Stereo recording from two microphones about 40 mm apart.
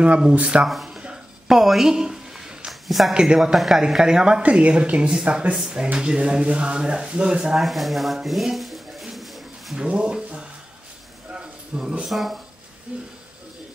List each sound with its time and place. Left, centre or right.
0.3 s speech: right
1.5 s a sound: centre
2.7 s a sound: centre
3.5 s speech: centre
4.0 s speech: centre
4.4 s speech: right
5.5 s speech: right
7.5 s speech: centre
9.1 s a sound: centre
9.8 s speech: right
11.3 s a sound: right
12.1 s speech: centre
12.9 s speech: right